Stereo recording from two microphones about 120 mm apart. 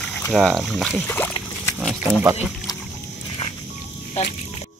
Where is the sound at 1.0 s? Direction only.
15° left (ahead or behind).